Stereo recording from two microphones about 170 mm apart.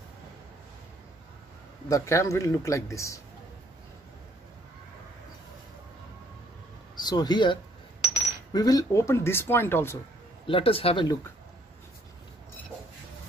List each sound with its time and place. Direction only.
1.9 s speech: 15° left (ahead or behind)
7.0 s speech: 25° left (ahead or behind)
8.5 s speech: 20° left (ahead or behind)
10.4 s speech: 35° left (ahead or behind)